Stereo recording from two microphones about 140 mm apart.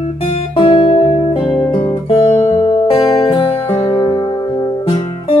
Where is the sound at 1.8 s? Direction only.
45° left (ahead or behind).